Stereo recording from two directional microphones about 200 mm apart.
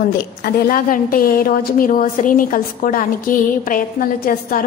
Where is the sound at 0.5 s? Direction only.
50° left (ahead or behind).